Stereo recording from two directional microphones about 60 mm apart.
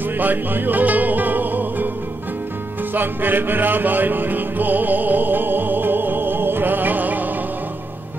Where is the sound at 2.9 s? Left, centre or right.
Right.